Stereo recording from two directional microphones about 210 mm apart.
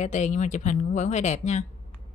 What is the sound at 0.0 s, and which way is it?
Speech, 35° left (ahead or behind).